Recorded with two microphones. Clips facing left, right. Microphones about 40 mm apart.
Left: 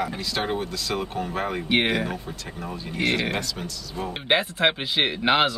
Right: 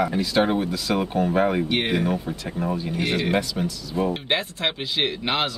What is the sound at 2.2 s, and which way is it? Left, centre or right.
Speech, centre.